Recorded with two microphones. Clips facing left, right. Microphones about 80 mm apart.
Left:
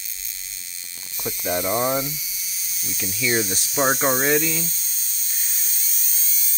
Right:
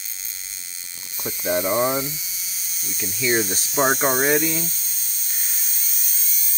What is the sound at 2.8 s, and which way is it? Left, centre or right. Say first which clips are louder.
Hum: even; centre.